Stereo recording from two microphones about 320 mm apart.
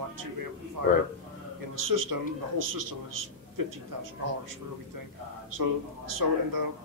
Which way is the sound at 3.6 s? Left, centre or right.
Right.